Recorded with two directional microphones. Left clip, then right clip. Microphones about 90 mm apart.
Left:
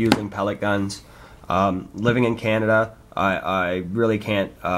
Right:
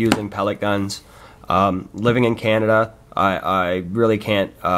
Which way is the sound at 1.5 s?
50° right (ahead or behind).